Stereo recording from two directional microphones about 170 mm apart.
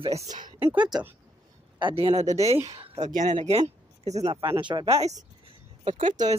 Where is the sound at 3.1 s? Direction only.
50° right (ahead or behind).